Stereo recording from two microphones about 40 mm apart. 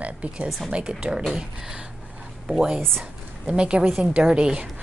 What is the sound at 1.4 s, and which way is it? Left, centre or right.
Speech, centre.